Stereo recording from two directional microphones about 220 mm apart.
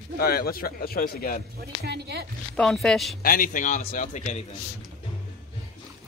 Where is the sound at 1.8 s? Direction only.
50° right (ahead or behind).